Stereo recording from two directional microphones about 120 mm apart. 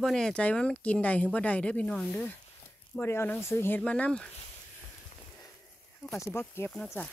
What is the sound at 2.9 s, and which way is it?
Speech, 20° left (ahead or behind).